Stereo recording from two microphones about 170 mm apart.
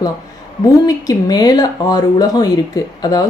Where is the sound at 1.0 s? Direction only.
20° left (ahead or behind).